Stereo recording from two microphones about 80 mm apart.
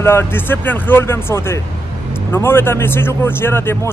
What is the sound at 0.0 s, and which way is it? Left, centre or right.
Speech, left.